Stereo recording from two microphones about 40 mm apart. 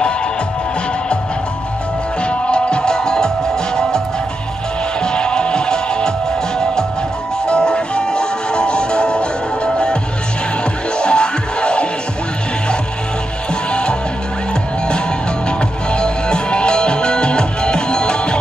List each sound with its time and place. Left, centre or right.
2.2 s music: left
5.0 s music: left
13.7 s music: left
15.4 s music: left